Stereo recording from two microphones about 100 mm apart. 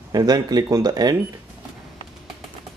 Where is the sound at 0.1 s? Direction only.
40° right (ahead or behind).